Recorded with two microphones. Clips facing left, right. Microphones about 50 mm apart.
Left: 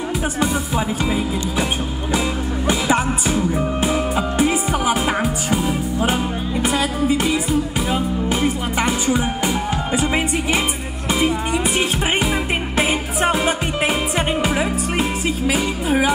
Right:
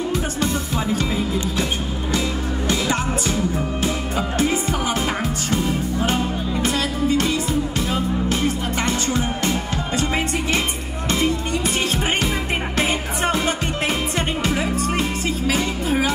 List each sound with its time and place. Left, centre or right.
2.7 s music: centre
12.7 s music: centre